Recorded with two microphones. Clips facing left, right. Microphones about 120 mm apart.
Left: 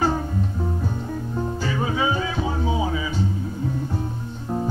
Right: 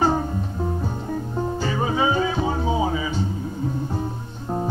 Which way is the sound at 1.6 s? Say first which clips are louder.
Right 2 dB; 30° right (ahead or behind).